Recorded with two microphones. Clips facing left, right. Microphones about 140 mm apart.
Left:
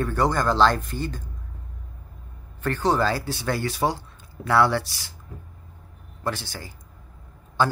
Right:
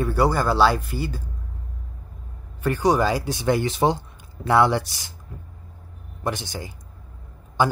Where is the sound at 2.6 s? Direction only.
10° right (ahead or behind).